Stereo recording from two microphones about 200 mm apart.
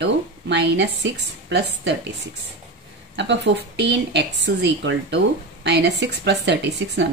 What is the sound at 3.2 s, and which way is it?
Speech, 60° right (ahead or behind).